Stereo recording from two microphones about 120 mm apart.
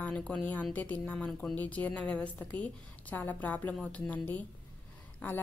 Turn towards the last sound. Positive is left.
turn(degrees=15)  # may be behind; listen again after turning